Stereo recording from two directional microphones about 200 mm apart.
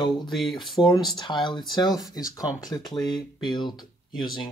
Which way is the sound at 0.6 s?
Centre (ahead or behind).